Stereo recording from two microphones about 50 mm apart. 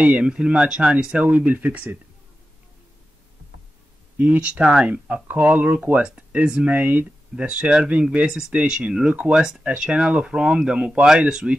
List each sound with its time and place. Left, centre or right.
0.0 s speech: right
4.2 s speech: right
7.3 s speech: right